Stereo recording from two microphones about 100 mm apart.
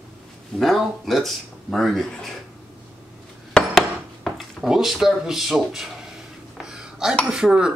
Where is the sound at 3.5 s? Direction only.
5° left (ahead or behind).